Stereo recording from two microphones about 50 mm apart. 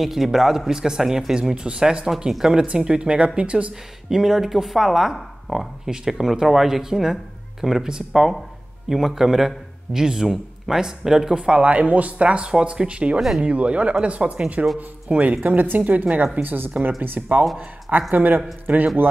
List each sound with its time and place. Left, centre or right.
0.0 s speech: centre; by 3.7 s right
4.1 s a woman's voice: centre; by 16.3 s right
16.4 s a woman's voice: right